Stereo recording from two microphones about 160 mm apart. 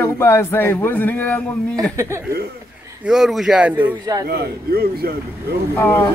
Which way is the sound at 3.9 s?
25° right (ahead or behind).